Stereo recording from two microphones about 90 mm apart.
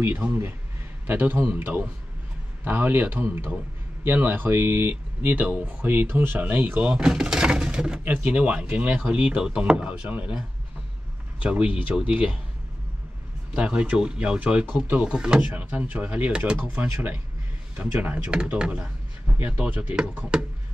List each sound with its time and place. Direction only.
0.0 s speech: 25° right (ahead or behind)
11.4 s speech: 10° right (ahead or behind)
13.6 s speech: 10° right (ahead or behind)
16.8 s speech: 25° right (ahead or behind); by 20.4 s 10° right (ahead or behind)